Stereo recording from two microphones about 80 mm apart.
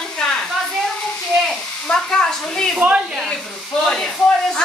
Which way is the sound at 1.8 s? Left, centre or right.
Centre.